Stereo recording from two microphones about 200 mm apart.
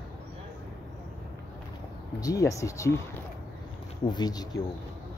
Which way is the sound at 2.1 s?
15° left (ahead or behind).